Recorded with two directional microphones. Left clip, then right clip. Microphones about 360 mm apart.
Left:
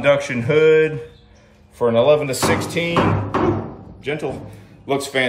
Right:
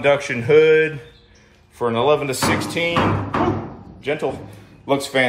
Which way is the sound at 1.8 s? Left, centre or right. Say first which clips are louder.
Left 3 dB; centre.